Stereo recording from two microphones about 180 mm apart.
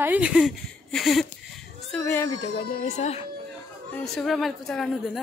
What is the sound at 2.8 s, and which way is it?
Speech, 40° left (ahead or behind).